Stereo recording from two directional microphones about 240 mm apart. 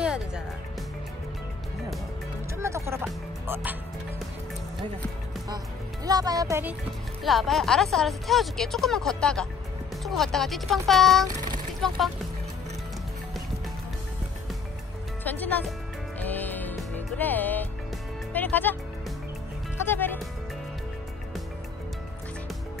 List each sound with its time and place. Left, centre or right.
0.0 s music: centre
2.5 s music: centre
6.0 s speech: centre
7.2 s speech: centre
11.2 s a sound: right
15.2 s speech: centre
16.2 s music: centre